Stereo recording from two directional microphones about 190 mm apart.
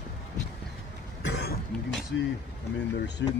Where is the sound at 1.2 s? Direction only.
65° left (ahead or behind).